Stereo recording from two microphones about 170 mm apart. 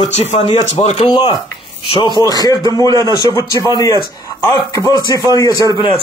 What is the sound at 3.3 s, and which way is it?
Speech, 20° left (ahead or behind).